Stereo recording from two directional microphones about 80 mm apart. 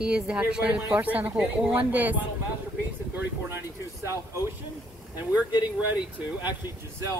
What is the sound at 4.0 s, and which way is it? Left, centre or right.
Speech, right.